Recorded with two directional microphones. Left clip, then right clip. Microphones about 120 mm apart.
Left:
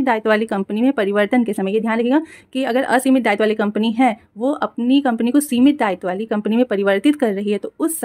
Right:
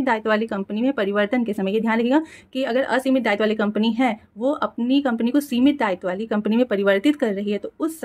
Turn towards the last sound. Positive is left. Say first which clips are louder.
# left 4 dB
turn(degrees=45)  # may be behind; listen again after turning